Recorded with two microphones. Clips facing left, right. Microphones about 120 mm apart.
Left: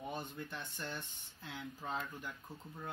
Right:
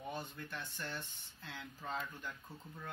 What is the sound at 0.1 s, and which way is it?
Speech, 15° left (ahead or behind).